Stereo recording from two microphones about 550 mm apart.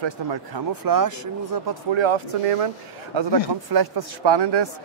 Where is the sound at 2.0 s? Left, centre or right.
Right.